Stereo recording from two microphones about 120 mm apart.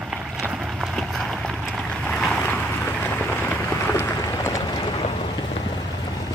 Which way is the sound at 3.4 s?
20° left (ahead or behind).